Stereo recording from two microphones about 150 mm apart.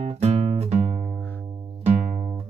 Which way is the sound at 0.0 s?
45° right (ahead or behind).